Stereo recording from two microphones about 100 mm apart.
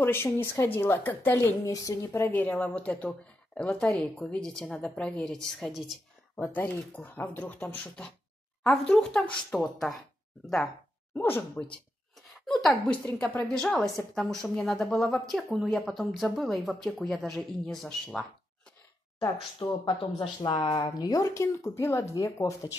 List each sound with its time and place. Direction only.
0.0 s speech: 25° left (ahead or behind)
1.4 s speech: 35° left (ahead or behind)
2.3 s speech: 15° left (ahead or behind); by 5.9 s centre (ahead or behind)
6.5 s speech: 15° left (ahead or behind); by 9.9 s centre (ahead or behind)
11.1 s speech: 20° left (ahead or behind)
12.2 s a sound: 5° left (ahead or behind)
12.8 s speech: 20° left (ahead or behind)
13.5 s speech: 5° left (ahead or behind)
19.6 s speech: 50° left (ahead or behind); by 22.7 s 30° left (ahead or behind)